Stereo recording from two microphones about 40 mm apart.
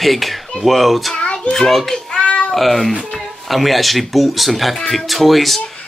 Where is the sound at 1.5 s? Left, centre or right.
Centre.